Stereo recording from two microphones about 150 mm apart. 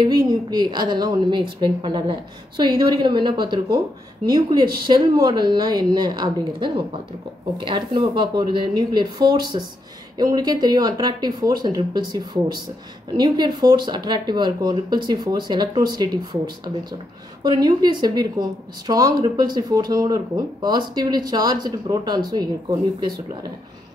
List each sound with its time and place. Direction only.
0.0 s a woman's voice: 30° right (ahead or behind)
17.4 s a woman's voice: 25° right (ahead or behind)